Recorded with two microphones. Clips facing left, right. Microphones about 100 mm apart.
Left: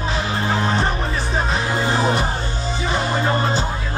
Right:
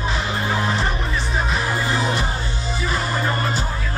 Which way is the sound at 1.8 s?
35° left (ahead or behind).